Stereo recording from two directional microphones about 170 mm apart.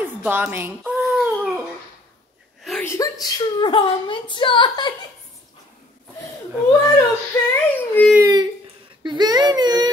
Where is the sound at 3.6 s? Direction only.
30° left (ahead or behind).